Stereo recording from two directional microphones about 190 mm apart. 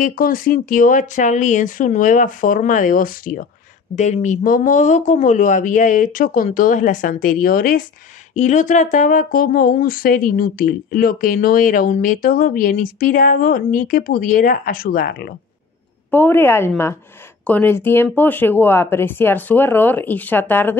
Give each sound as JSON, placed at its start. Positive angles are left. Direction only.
{"t": 0.0, "sound": "speech", "side_deg": 45}
{"t": 3.9, "sound": "speech", "side_deg": 40}
{"t": 16.1, "sound": "speech", "side_deg": 10}